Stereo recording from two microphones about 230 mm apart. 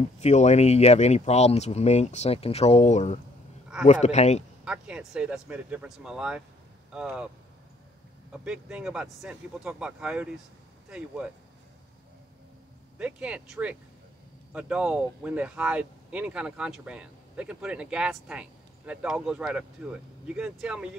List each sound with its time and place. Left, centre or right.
0.2 s speech: left
4.6 s speech: centre
8.3 s speech: centre
12.9 s speech: centre